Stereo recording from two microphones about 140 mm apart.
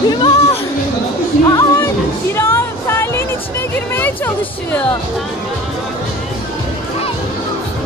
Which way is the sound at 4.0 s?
15° left (ahead or behind).